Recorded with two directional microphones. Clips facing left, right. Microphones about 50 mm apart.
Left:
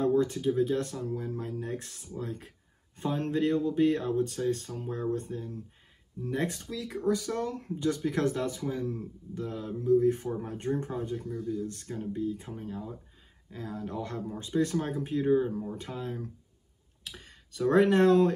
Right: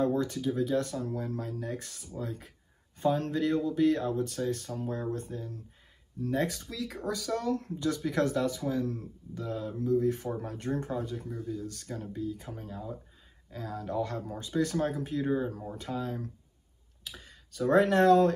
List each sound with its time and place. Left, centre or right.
0.1 s speech: left
1.0 s speech: centre
1.6 s speech: left
4.8 s speech: centre
5.1 s speech: left
11.1 s speech: centre
11.5 s speech: left
15.3 s speech: centre
15.9 s speech: left
17.0 s speech: left